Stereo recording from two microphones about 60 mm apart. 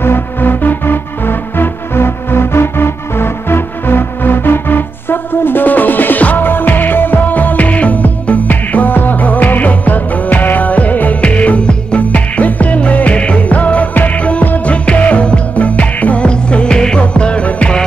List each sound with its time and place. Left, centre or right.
0.0 s music: left; by 17.8 s centre